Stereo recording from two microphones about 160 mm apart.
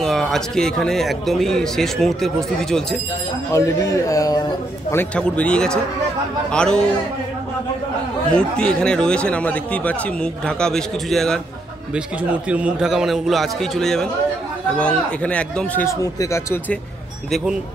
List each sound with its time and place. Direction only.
0.0 s speech: centre (ahead or behind)
3.5 s a man's voice: 20° left (ahead or behind)
4.9 s speech: 10° left (ahead or behind)
8.3 s speech: 5° left (ahead or behind)
11.9 s speech: 10° right (ahead or behind); by 16.7 s 15° left (ahead or behind)